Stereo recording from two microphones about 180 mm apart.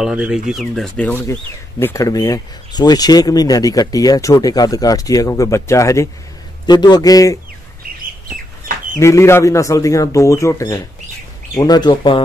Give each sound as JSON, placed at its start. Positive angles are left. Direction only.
{"t": 0.0, "sound": "speech", "side_deg": -5}
{"t": 8.6, "sound": "bird", "side_deg": -50}
{"t": 9.0, "sound": "a man's voice", "side_deg": 15}